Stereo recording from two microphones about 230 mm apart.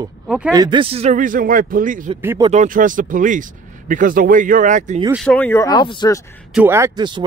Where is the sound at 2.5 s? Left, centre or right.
Right.